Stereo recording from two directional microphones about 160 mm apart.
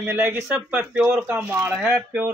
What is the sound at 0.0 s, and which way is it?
Speech, 15° right (ahead or behind).